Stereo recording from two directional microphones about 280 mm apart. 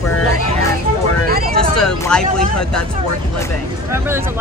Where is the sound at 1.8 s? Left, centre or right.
Centre.